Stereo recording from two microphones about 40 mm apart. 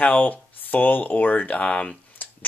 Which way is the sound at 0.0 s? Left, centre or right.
Left.